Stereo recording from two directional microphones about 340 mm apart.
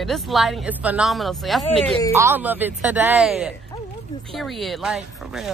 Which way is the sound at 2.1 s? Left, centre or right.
Centre.